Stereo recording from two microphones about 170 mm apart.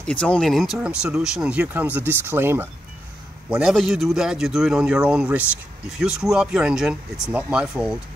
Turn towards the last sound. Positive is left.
turn(degrees=-5)  # may be behind; listen again after turning